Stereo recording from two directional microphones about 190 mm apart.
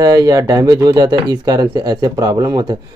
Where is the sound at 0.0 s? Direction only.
20° right (ahead or behind).